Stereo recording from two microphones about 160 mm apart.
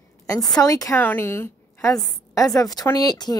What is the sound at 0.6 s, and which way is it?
A woman's voice, 20° left (ahead or behind).